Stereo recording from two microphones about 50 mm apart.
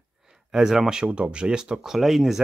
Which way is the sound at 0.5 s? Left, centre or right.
Centre.